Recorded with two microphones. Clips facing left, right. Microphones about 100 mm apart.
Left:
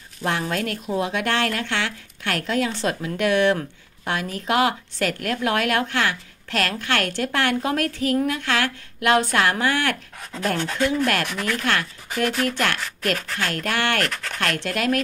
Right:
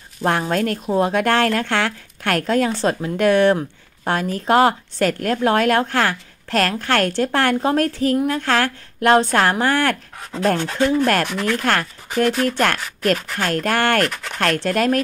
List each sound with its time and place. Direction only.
0.2 s a woman's voice: 40° right (ahead or behind)